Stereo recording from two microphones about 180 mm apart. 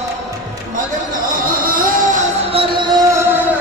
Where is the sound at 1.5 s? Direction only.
50° right (ahead or behind); by 3.4 s 15° right (ahead or behind).